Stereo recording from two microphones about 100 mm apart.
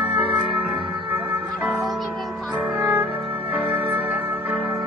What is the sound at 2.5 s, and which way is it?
Music, 15° right (ahead or behind).